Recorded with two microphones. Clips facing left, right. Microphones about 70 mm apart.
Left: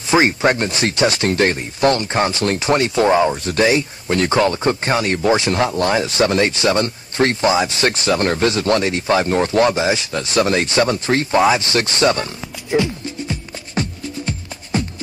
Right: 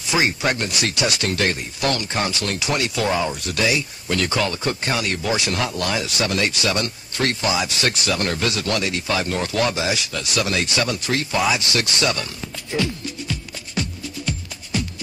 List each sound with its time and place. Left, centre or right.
0.1 s speech: left
12.7 s music: left